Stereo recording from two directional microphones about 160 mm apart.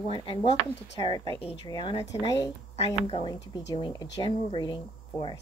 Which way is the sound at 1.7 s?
30° left (ahead or behind).